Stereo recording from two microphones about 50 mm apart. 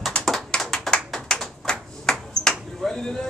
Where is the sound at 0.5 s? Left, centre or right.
Centre.